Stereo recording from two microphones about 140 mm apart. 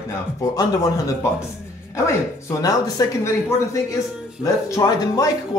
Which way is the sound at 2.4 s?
20° left (ahead or behind).